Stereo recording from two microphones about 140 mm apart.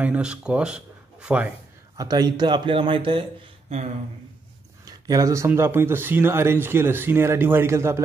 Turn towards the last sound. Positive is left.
turn(degrees=-20)  # may be behind; listen again after turning